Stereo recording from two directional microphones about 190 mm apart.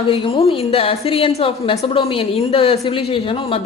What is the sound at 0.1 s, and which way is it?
A woman's voice, 30° left (ahead or behind).